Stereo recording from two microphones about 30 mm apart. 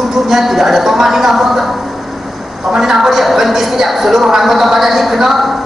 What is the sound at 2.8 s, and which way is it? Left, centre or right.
A woman's voice, centre.